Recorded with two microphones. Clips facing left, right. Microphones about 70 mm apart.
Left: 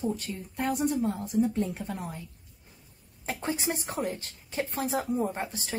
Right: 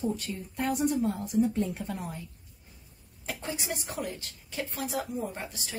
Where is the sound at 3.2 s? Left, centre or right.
Left.